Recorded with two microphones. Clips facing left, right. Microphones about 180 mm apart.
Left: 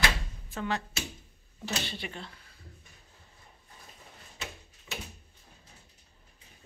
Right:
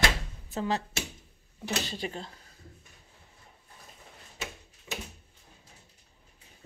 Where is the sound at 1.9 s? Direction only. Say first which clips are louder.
Right 4 dB; 40° right (ahead or behind).